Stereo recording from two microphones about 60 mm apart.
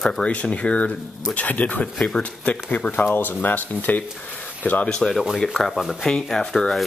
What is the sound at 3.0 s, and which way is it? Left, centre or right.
Speech, left.